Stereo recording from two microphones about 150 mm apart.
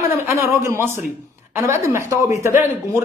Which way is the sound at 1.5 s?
20° right (ahead or behind).